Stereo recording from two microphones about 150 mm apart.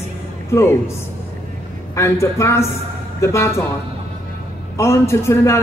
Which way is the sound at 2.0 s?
20° left (ahead or behind).